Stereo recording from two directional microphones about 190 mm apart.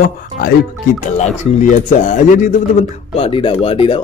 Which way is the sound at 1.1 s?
35° left (ahead or behind).